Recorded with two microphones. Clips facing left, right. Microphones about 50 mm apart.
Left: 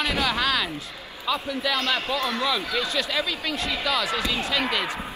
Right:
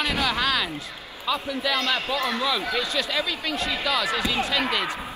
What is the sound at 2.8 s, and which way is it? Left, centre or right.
Speech, centre.